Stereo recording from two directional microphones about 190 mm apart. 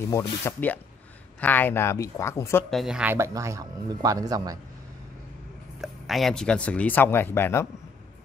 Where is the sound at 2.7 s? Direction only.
5° right (ahead or behind); by 4.6 s 20° right (ahead or behind).